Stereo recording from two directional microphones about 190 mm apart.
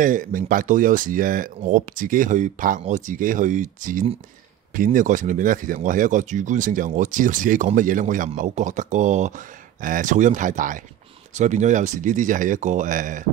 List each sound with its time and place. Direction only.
0.0 s speech: 45° right (ahead or behind)